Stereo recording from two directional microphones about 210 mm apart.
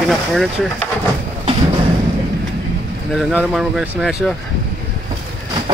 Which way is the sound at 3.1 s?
5° right (ahead or behind).